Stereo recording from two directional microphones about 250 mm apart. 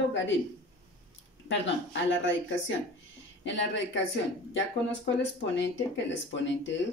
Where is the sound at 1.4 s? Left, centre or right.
Left.